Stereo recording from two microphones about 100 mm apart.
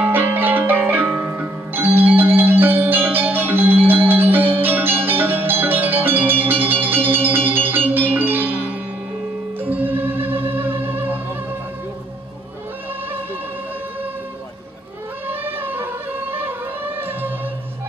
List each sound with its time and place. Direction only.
0.0 s music: 20° right (ahead or behind)
9.6 s music: 20° right (ahead or behind)
15.2 s music: 20° right (ahead or behind)